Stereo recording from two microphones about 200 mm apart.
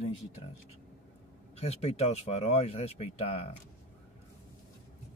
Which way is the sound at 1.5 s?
30° left (ahead or behind).